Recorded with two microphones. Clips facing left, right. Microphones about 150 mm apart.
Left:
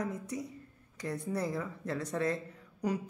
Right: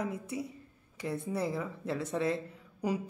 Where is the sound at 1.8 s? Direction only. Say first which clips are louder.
Right 1 dB; 25° right (ahead or behind).